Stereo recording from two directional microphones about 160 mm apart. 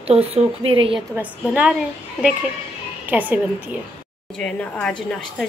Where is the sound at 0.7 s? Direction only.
35° right (ahead or behind).